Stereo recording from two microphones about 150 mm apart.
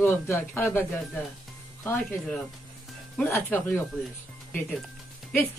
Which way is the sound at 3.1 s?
15° left (ahead or behind).